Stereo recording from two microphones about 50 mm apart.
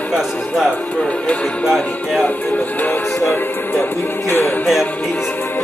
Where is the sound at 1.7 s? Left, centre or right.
Centre.